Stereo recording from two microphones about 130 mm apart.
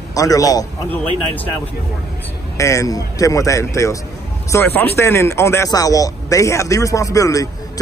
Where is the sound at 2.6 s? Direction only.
25° left (ahead or behind).